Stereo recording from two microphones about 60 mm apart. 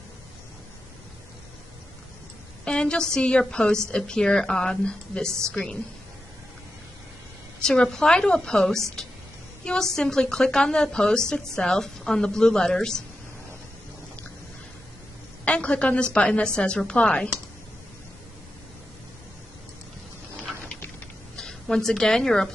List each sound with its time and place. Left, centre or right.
2.6 s a woman's voice: centre
7.6 s a woman's voice: centre
9.9 s a woman's voice: centre
15.4 s a woman's voice: centre
21.4 s a woman's voice: centre